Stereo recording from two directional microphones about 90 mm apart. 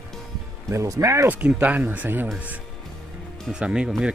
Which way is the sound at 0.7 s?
35° right (ahead or behind).